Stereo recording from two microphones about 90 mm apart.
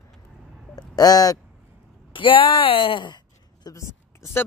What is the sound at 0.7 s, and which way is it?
Speech, 45° left (ahead or behind).